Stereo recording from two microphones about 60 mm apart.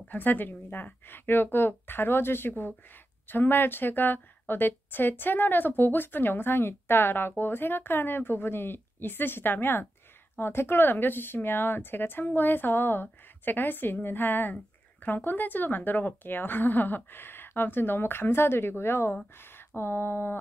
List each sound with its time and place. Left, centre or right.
0.0 s a woman's voice: left